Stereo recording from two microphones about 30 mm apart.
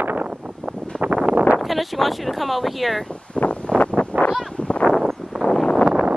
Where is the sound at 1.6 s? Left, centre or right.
Centre.